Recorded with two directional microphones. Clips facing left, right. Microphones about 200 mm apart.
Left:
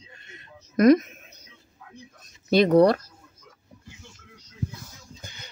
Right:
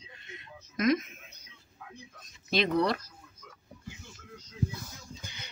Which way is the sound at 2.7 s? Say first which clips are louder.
Left 12 dB; 55° left (ahead or behind).